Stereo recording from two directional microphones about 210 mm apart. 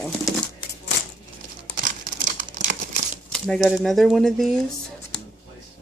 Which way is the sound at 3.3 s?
Centre (ahead or behind).